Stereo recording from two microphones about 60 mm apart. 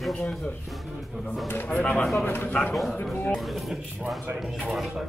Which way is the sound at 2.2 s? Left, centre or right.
Left.